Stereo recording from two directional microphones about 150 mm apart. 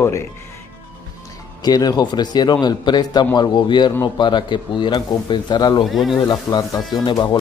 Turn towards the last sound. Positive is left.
turn(degrees=30)  # may be behind; listen again after turning